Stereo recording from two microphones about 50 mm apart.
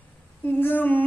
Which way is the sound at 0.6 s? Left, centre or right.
Left.